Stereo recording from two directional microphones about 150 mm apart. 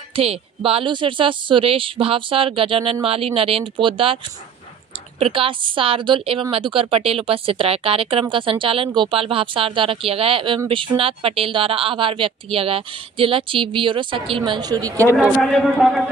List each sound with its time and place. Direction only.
0.1 s a woman's voice: 40° right (ahead or behind)
5.2 s a woman's voice: 35° right (ahead or behind)
15.1 s a man's voice: centre (ahead or behind)